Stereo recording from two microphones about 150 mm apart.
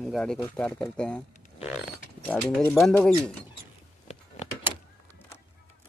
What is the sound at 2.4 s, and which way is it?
Speech, 5° right (ahead or behind).